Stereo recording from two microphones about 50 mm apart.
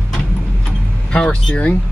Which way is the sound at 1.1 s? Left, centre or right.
Centre.